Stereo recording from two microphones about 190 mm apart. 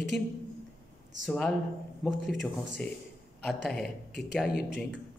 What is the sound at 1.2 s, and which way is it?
A man's voice, centre (ahead or behind).